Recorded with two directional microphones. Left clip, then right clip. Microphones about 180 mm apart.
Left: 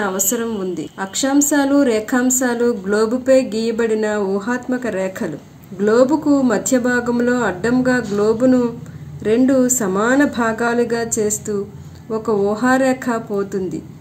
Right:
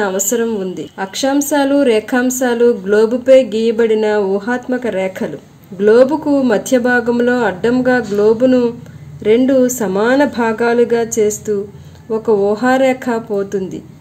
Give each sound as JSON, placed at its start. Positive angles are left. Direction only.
{"t": 0.0, "sound": "a woman's voice", "side_deg": -20}